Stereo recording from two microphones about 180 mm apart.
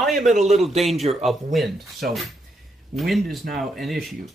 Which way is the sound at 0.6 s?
Centre (ahead or behind).